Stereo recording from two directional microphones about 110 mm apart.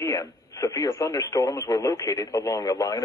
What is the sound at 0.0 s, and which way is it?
Speech, 30° left (ahead or behind).